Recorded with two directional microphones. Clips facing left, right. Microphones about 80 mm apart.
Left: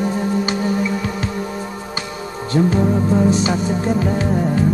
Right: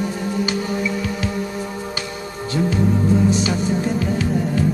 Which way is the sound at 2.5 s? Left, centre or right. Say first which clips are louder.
Left 5 dB; left.